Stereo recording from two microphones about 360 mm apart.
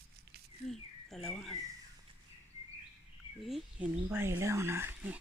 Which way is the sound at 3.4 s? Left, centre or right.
Centre.